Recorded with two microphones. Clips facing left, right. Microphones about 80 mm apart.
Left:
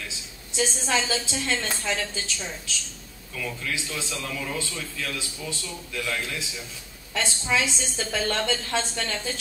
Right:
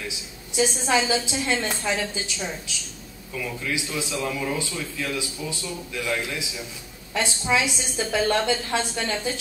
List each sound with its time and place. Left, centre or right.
0.7 s a man's voice: right